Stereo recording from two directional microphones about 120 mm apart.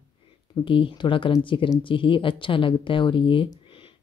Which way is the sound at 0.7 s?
45° left (ahead or behind).